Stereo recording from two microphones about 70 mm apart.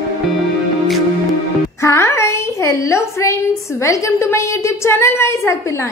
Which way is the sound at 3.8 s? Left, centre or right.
Left.